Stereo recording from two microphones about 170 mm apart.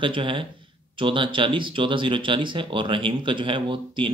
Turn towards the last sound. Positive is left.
turn(degrees=-30)  # may be behind; listen again after turning